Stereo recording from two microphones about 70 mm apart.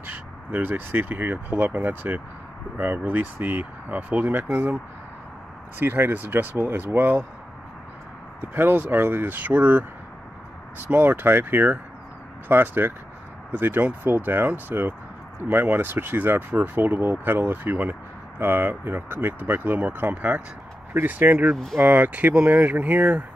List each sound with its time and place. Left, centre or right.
0.0 s speech: right
5.8 s speech: right
8.4 s speech: right